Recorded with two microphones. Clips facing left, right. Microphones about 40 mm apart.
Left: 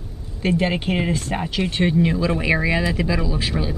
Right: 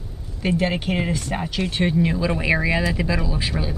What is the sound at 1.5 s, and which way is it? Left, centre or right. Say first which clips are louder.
Speech: left 2 dB; left.